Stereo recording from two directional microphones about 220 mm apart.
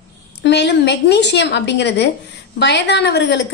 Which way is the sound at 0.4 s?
50° left (ahead or behind).